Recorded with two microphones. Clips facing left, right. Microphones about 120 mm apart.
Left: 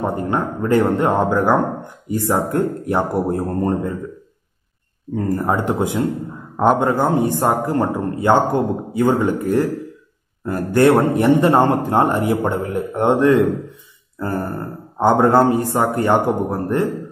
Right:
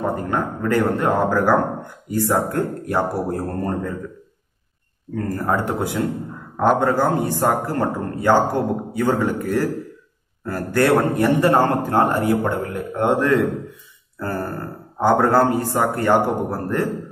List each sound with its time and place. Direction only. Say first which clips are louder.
0.0 s a man's voice: left 2 dB; 25° left (ahead or behind)
5.1 s a man's voice: left 3 dB; 20° left (ahead or behind)